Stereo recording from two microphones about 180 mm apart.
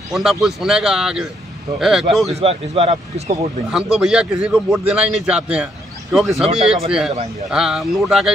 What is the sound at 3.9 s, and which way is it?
A man's voice, 5° right (ahead or behind).